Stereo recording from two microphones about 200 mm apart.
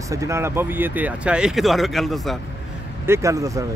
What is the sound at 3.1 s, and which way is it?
Speech, 15° right (ahead or behind).